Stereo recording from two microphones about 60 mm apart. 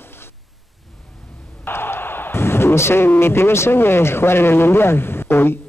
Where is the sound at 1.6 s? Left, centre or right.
Left.